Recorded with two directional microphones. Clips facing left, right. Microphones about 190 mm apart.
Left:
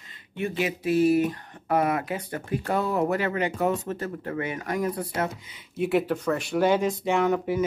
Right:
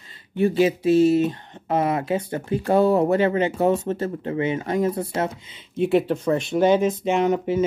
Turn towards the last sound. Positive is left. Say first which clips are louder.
# right 3 dB
turn(degrees=-20)  # may be behind; listen again after turning